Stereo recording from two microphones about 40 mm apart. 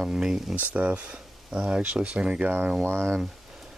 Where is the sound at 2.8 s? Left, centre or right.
Right.